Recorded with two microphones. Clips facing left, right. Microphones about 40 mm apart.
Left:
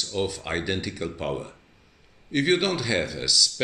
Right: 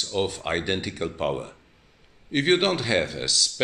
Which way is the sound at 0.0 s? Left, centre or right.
Right.